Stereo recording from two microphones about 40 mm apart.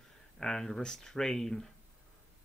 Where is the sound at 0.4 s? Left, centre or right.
Centre.